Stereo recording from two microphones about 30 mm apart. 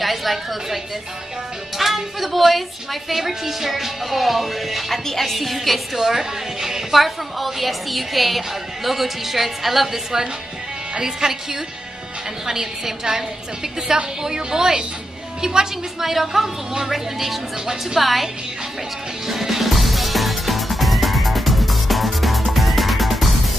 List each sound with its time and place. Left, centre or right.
0.0 s a woman's voice: centre
1.8 s a woman's voice: centre
5.9 s a woman's voice: centre
7.0 s a woman's voice: centre
11.0 s a woman's voice: right
12.4 s a woman's voice: centre
16.1 s a woman's voice: centre
19.2 s music: centre